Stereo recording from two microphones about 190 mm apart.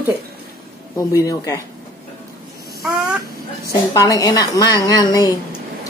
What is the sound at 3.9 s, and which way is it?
A woman's voice, 20° left (ahead or behind).